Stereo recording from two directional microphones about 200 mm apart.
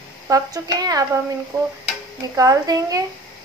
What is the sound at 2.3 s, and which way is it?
Speech, 15° right (ahead or behind).